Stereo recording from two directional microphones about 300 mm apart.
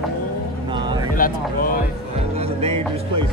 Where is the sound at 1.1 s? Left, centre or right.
Left.